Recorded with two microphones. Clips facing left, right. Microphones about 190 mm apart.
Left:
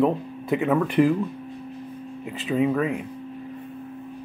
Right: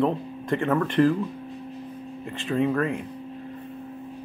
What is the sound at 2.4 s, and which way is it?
Speech, 5° left (ahead or behind).